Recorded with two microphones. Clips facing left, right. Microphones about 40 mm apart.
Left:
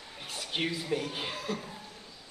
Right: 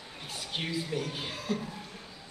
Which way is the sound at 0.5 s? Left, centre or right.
Centre.